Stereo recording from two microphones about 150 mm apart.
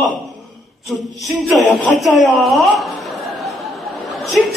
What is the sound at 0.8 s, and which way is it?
A man's voice, centre (ahead or behind).